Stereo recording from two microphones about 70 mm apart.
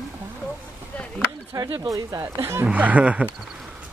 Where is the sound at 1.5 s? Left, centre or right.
Right.